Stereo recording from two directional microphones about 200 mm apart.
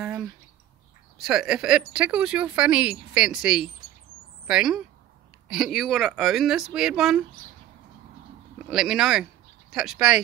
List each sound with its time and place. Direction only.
0.0 s bird: 5° right (ahead or behind)
1.1 s speech: centre (ahead or behind)
8.6 s speech: centre (ahead or behind)